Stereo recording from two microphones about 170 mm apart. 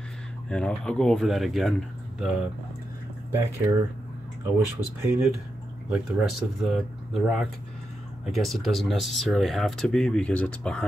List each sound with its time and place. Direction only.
0.5 s speech: 5° left (ahead or behind)
3.3 s speech: 15° right (ahead or behind)
5.0 s speech: 15° right (ahead or behind)
5.9 s speech: centre (ahead or behind)